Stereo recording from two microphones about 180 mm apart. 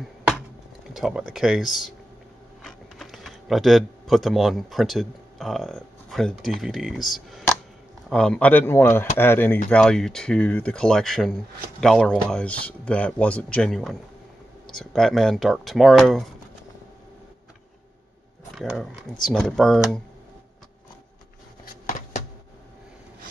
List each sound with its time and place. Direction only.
0.9 s speech: centre (ahead or behind)
18.5 s speech: centre (ahead or behind)
21.8 s shuffling cards: 40° left (ahead or behind)